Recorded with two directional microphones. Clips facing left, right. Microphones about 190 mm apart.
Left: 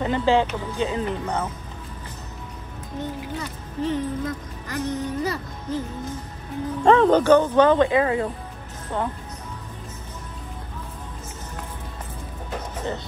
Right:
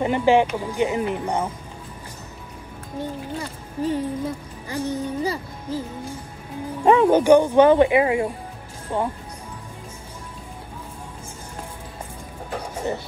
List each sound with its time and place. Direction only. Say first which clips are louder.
0.0 s speech: right 3 dB; 15° right (ahead or behind)
3.0 s speech: right 1 dB; 10° right (ahead or behind)
12.4 s music: right 3 dB; 10° right (ahead or behind)